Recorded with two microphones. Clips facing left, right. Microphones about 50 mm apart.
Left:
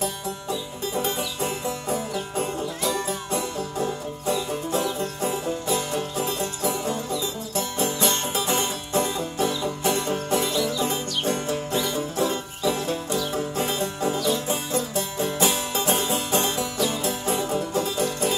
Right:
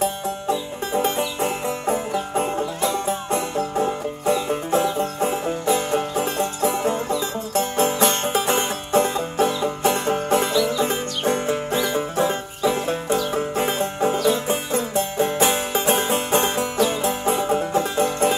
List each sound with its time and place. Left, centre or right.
0.0 s music: right